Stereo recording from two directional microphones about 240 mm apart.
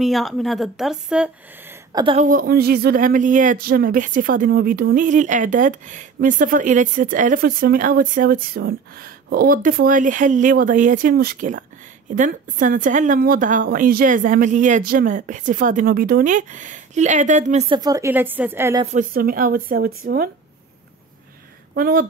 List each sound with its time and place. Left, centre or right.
0.0 s speech: centre
1.9 s a woman's voice: centre
2.1 s speech: right; by 18.9 s centre
18.9 s speech: right
21.7 s speech: right